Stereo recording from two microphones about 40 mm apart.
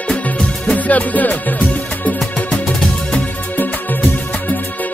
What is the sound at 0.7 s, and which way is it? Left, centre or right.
Music, left.